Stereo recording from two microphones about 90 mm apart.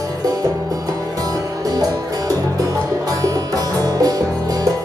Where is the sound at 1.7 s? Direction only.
45° right (ahead or behind).